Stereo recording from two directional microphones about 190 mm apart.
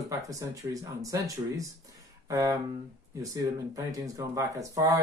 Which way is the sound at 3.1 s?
15° right (ahead or behind).